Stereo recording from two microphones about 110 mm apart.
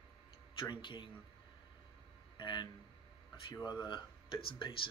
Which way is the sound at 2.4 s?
45° left (ahead or behind).